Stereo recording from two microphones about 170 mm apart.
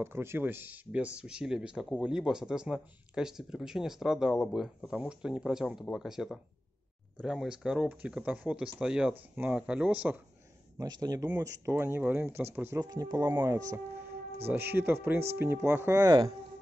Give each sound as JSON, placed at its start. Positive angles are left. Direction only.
{"t": 0.0, "sound": "speech", "side_deg": -15}
{"t": 10.8, "sound": "speech", "side_deg": -20}